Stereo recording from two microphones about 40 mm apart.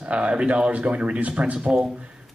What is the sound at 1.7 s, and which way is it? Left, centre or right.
Speech, centre.